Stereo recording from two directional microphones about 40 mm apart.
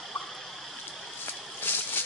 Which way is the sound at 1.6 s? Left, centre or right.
Left.